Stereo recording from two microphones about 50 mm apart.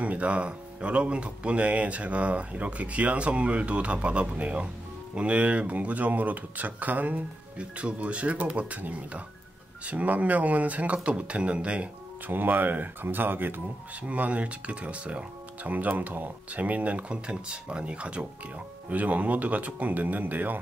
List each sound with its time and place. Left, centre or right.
0.0 s speech: right
12.3 s speech: right
14.0 s speech: right